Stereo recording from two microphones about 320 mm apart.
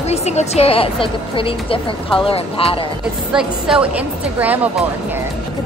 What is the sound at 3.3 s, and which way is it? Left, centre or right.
Speech, centre.